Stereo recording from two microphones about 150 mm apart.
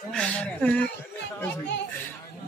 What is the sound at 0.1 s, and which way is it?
Speech, 5° left (ahead or behind).